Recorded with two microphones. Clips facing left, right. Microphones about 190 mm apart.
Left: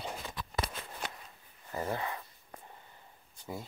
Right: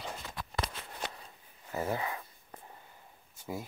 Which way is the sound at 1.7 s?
5° right (ahead or behind).